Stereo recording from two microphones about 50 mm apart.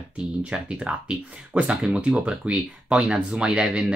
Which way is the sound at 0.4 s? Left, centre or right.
Right.